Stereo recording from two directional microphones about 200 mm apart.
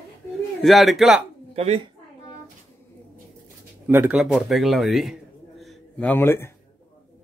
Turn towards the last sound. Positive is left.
turn(degrees=10)  # may be behind; listen again after turning